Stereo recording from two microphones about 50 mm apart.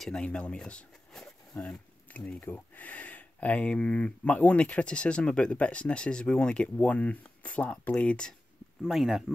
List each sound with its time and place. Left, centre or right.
0.2 s speech: left
1.1 s a sound: centre
2.1 s a sound: left
2.4 s speech: left
7.9 s speech: left
8.8 s speech: centre